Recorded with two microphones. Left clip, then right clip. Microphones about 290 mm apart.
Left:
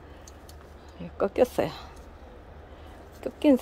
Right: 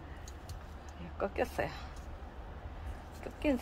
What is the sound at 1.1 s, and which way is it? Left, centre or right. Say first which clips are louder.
Speech: left 11 dB; left.